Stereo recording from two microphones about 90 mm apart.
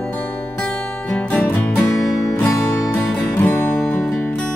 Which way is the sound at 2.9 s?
20° left (ahead or behind).